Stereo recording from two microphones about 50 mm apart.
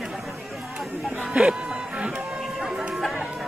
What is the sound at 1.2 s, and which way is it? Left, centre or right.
Speech, right.